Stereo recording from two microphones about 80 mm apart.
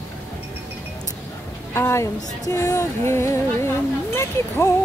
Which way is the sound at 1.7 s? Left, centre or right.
Left.